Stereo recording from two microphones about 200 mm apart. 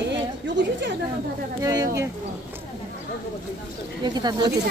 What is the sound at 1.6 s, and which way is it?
Speech, 15° right (ahead or behind).